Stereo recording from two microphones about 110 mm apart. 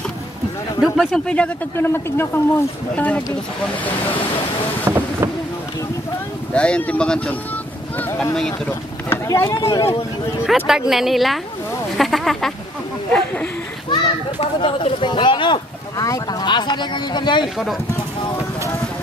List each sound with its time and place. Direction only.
0.9 s speech: 5° left (ahead or behind)
1.9 s speech: 20° left (ahead or behind)
4.8 s vehicle: 20° right (ahead or behind)
6.5 s speech: 10° left (ahead or behind)
8.4 s speech: 10° left (ahead or behind)
9.1 s speech: 25° left (ahead or behind)
10.4 s speech: 5° right (ahead or behind); by 13.5 s 15° left (ahead or behind)
13.8 s speech: 50° left (ahead or behind)